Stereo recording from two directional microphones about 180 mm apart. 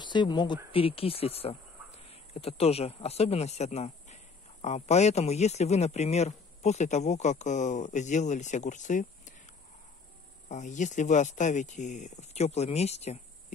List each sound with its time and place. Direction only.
0.0 s speech: 25° left (ahead or behind); by 9.3 s 45° left (ahead or behind)
10.5 s speech: 40° left (ahead or behind)